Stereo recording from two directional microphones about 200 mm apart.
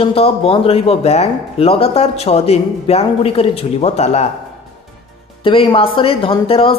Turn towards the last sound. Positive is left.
turn(degrees=25)  # may be behind; listen again after turning